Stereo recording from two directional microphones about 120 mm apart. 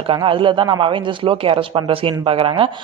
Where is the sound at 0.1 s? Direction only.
45° right (ahead or behind).